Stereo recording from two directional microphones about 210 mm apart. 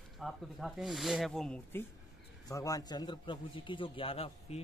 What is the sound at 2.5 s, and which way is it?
A man's voice, 15° left (ahead or behind).